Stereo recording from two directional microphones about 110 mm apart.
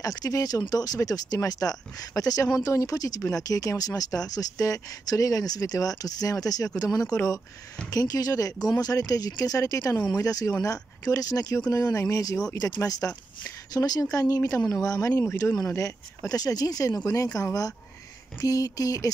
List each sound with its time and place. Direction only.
0.0 s speech: 35° left (ahead or behind)